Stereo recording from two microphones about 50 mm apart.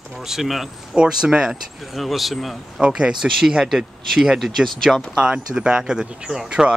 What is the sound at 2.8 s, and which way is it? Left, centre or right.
Speech, centre.